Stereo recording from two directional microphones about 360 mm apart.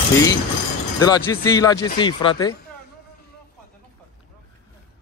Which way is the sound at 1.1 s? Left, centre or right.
Centre.